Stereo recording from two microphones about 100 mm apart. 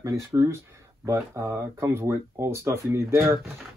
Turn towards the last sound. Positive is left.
turn(degrees=-30)  # may be behind; listen again after turning